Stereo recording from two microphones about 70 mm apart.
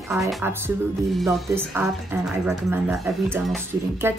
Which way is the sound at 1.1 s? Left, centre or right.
Centre.